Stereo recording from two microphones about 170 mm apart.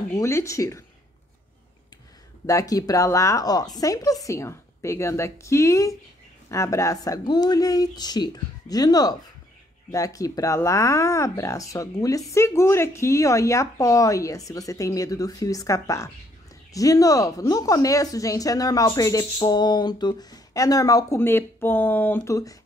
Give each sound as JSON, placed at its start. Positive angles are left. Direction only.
{"t": 0.1, "sound": "speech", "side_deg": 15}
{"t": 2.4, "sound": "speech", "side_deg": 20}